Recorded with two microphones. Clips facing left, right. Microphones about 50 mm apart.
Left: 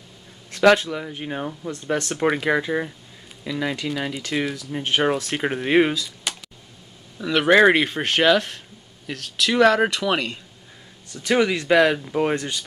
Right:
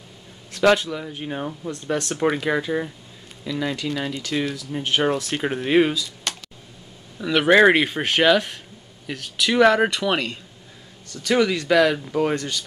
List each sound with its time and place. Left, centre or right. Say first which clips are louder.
0.5 s a man's voice: left 2 dB; left
0.8 s speech: left 1 dB; left
1.4 s speech: even; centre
1.7 s speech: left 1 dB; left
2.1 s speech: even; centre
2.4 s speech: left 1 dB; left
4.7 s speech: even; centre
6.3 s a sound: left 1 dB; centre
7.2 s speech: even; centre
11.2 s speech: even; left